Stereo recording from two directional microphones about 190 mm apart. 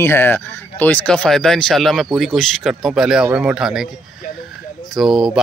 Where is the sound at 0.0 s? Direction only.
10° left (ahead or behind).